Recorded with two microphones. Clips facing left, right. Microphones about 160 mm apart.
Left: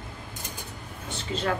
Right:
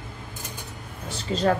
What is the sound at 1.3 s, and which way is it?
Speech, 35° right (ahead or behind).